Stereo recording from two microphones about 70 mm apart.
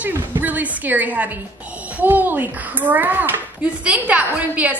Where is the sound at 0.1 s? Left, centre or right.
Right.